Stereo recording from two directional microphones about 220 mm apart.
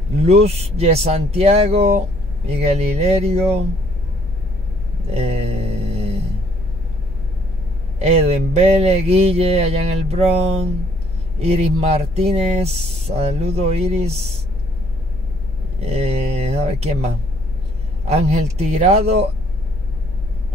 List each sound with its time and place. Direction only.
0.2 s speech: 30° right (ahead or behind)
5.1 s a sound: 30° right (ahead or behind)
8.0 s speech: 30° right (ahead or behind)
15.8 s speech: 30° right (ahead or behind)